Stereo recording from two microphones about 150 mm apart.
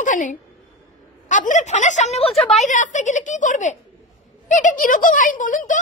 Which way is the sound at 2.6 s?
55° left (ahead or behind).